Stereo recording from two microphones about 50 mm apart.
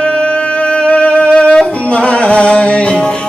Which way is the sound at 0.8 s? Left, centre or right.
Left.